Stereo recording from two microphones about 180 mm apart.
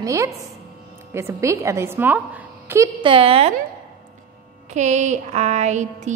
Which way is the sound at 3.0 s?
30° right (ahead or behind).